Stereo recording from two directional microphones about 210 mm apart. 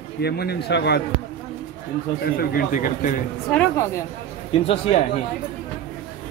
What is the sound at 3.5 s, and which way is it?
Speech, 10° left (ahead or behind).